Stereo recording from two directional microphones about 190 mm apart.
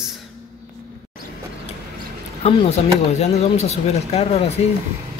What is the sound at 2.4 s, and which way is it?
Speech, 35° left (ahead or behind).